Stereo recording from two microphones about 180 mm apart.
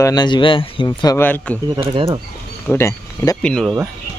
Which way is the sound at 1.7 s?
30° right (ahead or behind).